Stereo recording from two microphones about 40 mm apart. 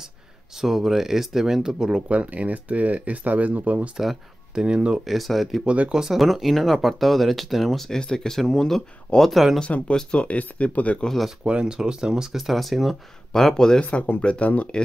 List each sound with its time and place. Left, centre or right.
0.6 s speech: centre
2.0 s speech: right
3.9 s speech: centre
4.6 s speech: right
5.0 s speech: centre
5.7 s speech: right
5.9 s speech: centre
8.0 s speech: centre
9.7 s speech: left
11.4 s speech: right
12.4 s speech: centre
13.3 s speech: centre
13.7 s speech: left